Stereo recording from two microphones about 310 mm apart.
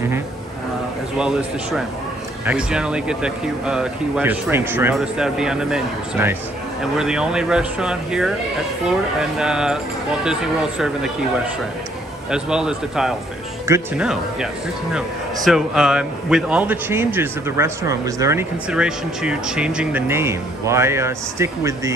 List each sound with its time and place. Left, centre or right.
2.4 s speech: centre
12.3 s speech: centre